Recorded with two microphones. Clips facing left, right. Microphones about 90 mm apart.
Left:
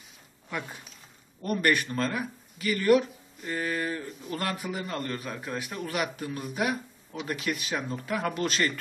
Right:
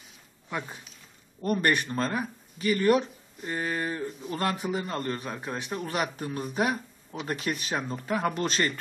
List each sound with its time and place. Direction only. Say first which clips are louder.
1.4 s speech: even; 30° right (ahead or behind)